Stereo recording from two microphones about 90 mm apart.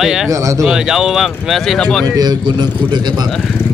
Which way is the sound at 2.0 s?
45° right (ahead or behind).